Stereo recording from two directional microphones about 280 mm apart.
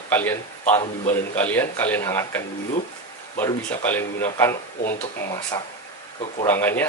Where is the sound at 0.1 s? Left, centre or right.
Centre.